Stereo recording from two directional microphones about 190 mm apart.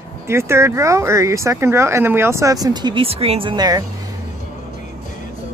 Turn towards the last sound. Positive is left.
turn(degrees=-20)  # may be behind; listen again after turning